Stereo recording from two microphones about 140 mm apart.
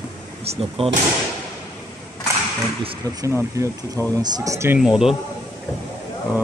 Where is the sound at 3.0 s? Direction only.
25° right (ahead or behind).